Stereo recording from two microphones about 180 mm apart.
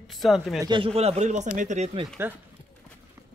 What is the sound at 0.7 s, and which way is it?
Speech, 30° right (ahead or behind).